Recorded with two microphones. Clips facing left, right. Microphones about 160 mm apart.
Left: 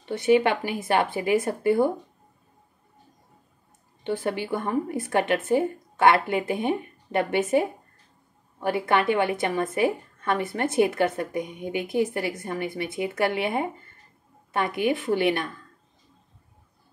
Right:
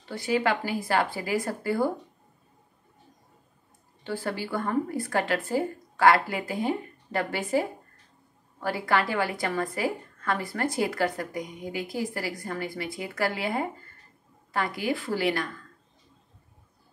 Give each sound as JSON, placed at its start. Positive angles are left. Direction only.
{"t": 0.0, "sound": "a woman's voice", "side_deg": 20}
{"t": 4.0, "sound": "a woman's voice", "side_deg": 20}